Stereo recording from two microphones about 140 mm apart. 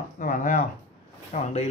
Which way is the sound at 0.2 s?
75° left (ahead or behind).